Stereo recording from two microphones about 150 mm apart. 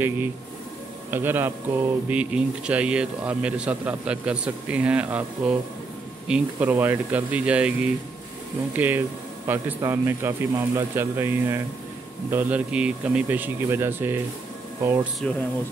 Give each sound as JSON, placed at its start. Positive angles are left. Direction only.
{"t": 1.1, "sound": "speech", "side_deg": -15}